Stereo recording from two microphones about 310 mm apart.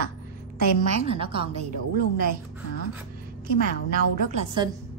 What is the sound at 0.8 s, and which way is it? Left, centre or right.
Speech, centre.